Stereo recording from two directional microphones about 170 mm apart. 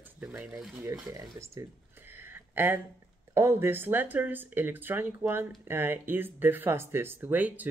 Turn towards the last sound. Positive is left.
turn(degrees=-10)  # may be behind; listen again after turning